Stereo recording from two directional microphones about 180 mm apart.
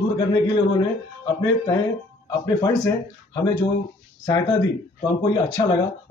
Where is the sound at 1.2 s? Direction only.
20° left (ahead or behind).